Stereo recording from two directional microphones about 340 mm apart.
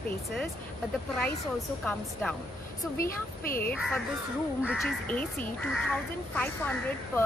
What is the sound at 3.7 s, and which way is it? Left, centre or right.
Speech, centre.